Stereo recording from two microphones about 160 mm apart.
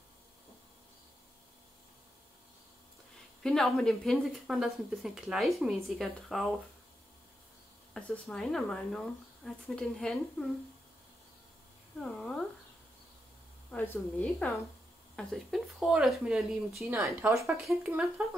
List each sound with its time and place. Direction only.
3.4 s a woman's voice: 5° left (ahead or behind)
7.9 s a woman's voice: 5° left (ahead or behind)
12.0 s a woman's voice: 5° left (ahead or behind)
13.7 s speech: 10° left (ahead or behind)
15.1 s a woman's voice: centre (ahead or behind)
16.9 s speech: 15° right (ahead or behind)